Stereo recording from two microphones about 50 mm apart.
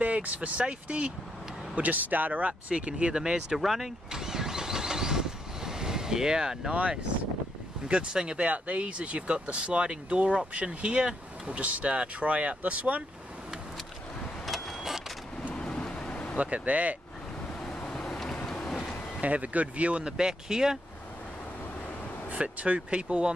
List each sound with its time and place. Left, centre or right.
0.0 s speech: right
2.9 s vehicle: centre
6.7 s speech: right
7.9 s speech: centre
14.4 s vehicle: centre
15.4 s vehicle: left
15.9 s a sound: left
16.3 s speech: right
17.6 s vehicle: centre
19.2 s speech: right; by 20.8 s centre
22.3 s speech: right